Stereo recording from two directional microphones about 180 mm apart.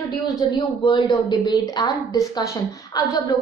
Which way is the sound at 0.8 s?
25° left (ahead or behind).